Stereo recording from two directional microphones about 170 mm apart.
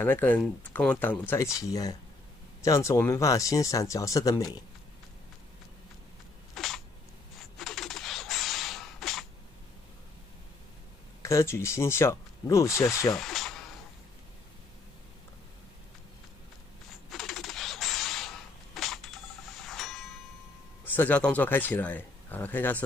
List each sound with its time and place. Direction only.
0.0 s speech: 10° left (ahead or behind)
6.5 s a sound: centre (ahead or behind)
11.2 s speech: 15° left (ahead or behind)
13.1 s tools: centre (ahead or behind)
17.1 s typewriter: centre (ahead or behind)
18.8 s a sound: centre (ahead or behind)
20.8 s a man's voice: 10° left (ahead or behind)